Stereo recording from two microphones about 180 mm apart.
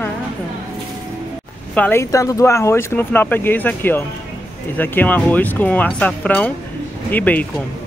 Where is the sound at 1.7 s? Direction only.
10° left (ahead or behind).